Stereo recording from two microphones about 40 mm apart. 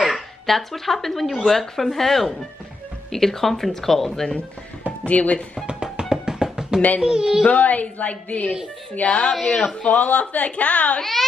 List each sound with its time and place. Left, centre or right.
0.0 s speech: centre
5.0 s a woman's voice: left
5.7 s music: centre
7.0 s a woman's voice: centre
7.4 s a woman's voice: left
11.0 s speech: centre